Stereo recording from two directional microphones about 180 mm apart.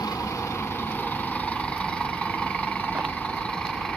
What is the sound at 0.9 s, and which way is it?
Vehicle, 10° left (ahead or behind).